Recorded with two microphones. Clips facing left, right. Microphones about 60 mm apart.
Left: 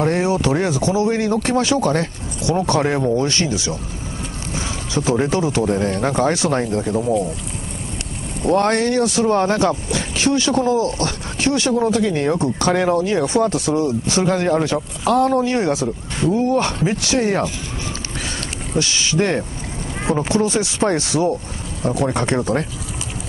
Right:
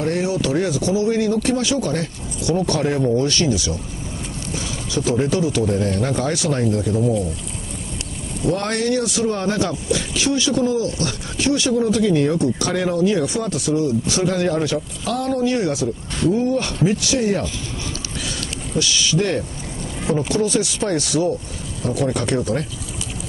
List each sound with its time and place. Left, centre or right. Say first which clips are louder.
0.1 s speech: left 2 dB; left
2.4 s speech: left 2 dB; left
5.1 s speech: left 1 dB; left
8.4 s speech: left 5 dB; left
18.7 s speech: even; left